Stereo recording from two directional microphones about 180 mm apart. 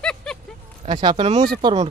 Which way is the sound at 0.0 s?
5° left (ahead or behind).